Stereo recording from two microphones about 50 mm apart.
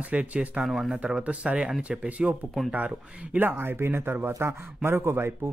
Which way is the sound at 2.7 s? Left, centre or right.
Right.